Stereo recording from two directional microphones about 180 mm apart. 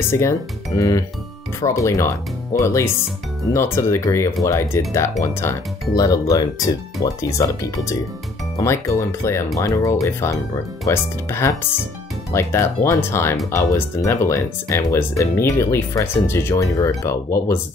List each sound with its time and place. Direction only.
0.1 s speech: 15° left (ahead or behind)